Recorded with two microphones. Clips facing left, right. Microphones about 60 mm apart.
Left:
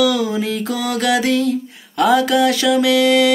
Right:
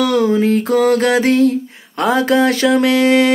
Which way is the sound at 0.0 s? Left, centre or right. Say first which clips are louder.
Right 3 dB; right.